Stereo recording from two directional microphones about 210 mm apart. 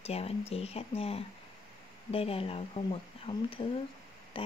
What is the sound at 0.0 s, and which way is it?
Speech, 30° left (ahead or behind).